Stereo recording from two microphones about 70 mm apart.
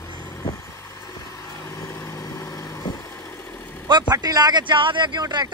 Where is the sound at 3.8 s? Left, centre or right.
Right.